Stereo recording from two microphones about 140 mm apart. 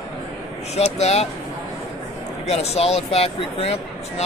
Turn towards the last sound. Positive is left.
turn(degrees=45)  # may be behind; listen again after turning